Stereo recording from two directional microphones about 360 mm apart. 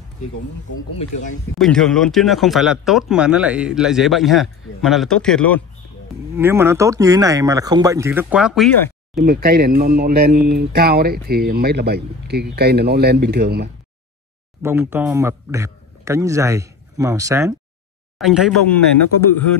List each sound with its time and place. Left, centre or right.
1.6 s speech: centre
9.1 s speech: right
14.6 s a man's voice: centre